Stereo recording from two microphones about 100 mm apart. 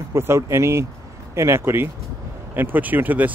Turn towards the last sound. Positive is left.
turn(degrees=-15)  # may be behind; listen again after turning